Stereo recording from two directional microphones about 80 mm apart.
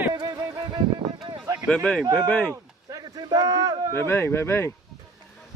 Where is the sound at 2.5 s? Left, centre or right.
Right.